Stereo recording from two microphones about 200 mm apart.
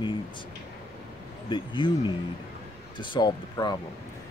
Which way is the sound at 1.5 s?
25° left (ahead or behind).